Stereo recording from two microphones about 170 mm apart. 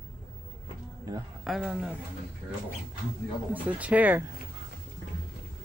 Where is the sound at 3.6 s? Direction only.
10° right (ahead or behind).